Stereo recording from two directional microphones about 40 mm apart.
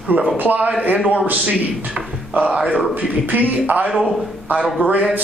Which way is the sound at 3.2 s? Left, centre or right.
Right.